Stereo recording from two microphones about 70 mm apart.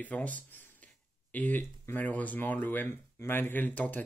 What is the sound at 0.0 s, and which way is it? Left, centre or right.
Speech, left.